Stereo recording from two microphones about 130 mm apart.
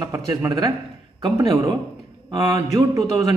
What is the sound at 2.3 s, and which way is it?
Speech, 30° right (ahead or behind).